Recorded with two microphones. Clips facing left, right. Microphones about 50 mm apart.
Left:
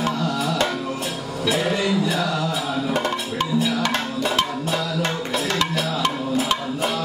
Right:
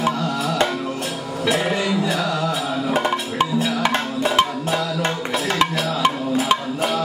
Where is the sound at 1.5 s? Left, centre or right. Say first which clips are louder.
Right 1 dB; centre.